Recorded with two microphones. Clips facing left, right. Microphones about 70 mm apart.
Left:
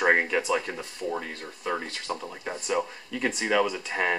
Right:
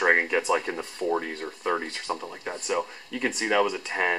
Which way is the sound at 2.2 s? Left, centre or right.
Centre.